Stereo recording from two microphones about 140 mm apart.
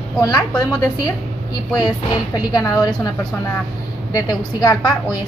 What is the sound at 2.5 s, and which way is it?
Speech, 25° left (ahead or behind).